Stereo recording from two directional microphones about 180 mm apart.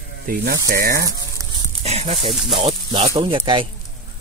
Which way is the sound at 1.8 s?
35° right (ahead or behind).